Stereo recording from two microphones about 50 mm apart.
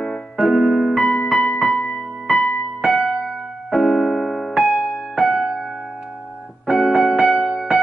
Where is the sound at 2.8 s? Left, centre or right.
Centre.